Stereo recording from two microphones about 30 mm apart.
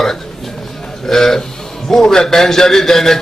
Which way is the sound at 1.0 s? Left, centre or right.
Centre.